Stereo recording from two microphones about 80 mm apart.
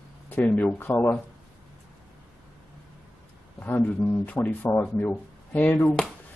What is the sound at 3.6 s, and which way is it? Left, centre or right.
A man's voice, left.